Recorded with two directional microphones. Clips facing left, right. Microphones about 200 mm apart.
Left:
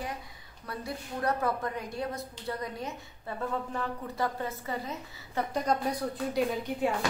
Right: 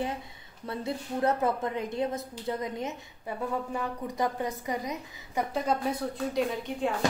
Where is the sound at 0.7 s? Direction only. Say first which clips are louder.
Right 5 dB; 25° right (ahead or behind).